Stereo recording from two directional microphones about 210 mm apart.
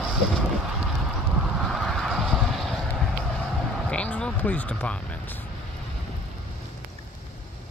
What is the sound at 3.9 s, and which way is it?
Vehicle, 5° left (ahead or behind).